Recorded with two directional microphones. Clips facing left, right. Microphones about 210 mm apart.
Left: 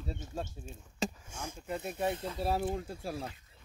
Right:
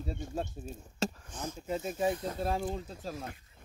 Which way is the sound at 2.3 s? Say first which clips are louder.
Left 1 dB; 5° left (ahead or behind).